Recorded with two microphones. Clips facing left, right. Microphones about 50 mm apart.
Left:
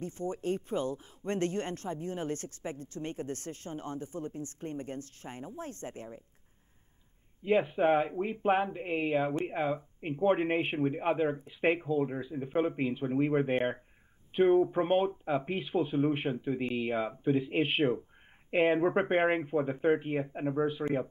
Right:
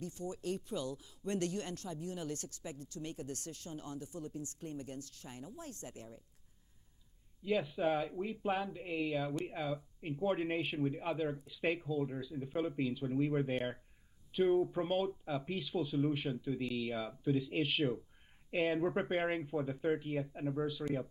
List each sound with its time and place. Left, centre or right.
0.0 s speech: left
7.4 s speech: left